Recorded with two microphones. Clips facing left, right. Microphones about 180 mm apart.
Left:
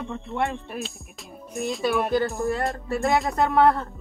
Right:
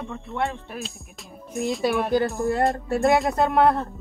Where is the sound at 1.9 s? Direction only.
Centre (ahead or behind).